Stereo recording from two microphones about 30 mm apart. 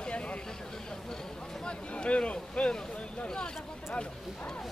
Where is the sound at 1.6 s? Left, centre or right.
Left.